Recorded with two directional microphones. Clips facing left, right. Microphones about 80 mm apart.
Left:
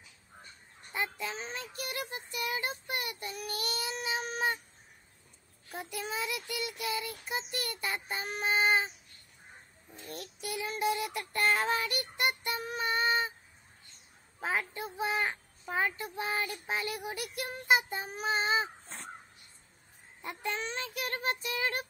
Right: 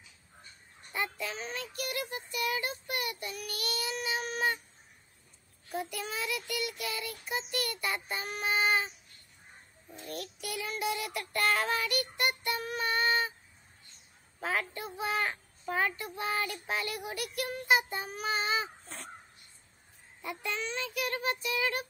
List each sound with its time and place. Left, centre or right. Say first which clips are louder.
0.9 s child singing: even; left
5.8 s child singing: right 1 dB; left
10.1 s child singing: even; left
14.4 s child singing: even; left
20.2 s child singing: even; left